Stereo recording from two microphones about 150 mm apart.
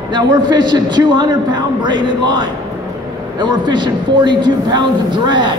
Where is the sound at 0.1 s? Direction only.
30° right (ahead or behind).